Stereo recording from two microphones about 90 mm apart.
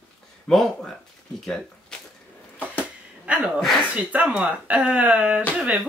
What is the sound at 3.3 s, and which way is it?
A woman's voice, 15° right (ahead or behind).